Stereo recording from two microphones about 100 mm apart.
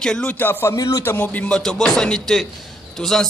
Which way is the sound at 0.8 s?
35° left (ahead or behind).